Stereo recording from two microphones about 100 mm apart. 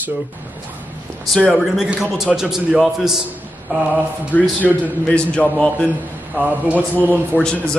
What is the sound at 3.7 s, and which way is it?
Speech, 15° right (ahead or behind).